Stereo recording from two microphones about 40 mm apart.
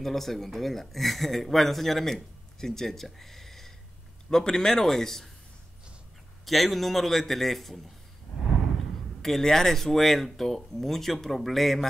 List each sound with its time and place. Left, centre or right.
0.0 s speech: centre
6.4 s speech: centre
9.2 s speech: centre